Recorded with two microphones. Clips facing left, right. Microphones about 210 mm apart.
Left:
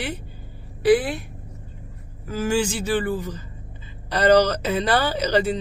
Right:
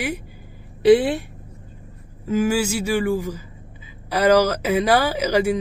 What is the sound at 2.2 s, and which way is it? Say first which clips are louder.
A man's voice: right 3 dB; 10° right (ahead or behind).